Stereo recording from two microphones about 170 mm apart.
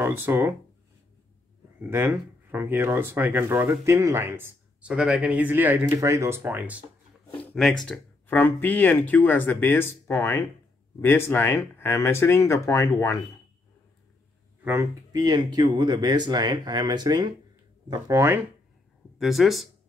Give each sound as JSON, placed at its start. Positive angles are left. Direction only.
{"t": 0.0, "sound": "speech", "side_deg": -10}
{"t": 1.8, "sound": "speech", "side_deg": -15}
{"t": 7.5, "sound": "speech", "side_deg": 0}
{"t": 14.6, "sound": "speech", "side_deg": -15}
{"t": 19.1, "sound": "speech", "side_deg": 0}